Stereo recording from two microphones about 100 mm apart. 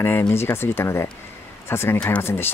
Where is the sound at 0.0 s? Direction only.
20° left (ahead or behind).